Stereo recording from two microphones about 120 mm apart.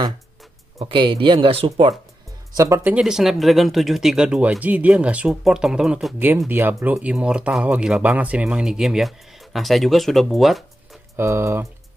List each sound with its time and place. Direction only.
0.7 s speech: 45° right (ahead or behind)
2.5 s speech: 25° right (ahead or behind)
2.9 s speech: 5° right (ahead or behind)
6.1 s speech: 15° right (ahead or behind); by 10.6 s centre (ahead or behind)
11.1 s speech: 20° right (ahead or behind)